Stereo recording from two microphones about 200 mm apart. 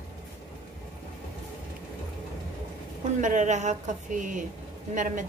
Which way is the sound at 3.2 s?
35° right (ahead or behind).